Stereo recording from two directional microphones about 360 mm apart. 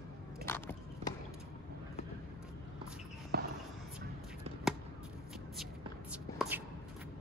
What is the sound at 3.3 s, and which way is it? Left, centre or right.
Basketball bounce, right.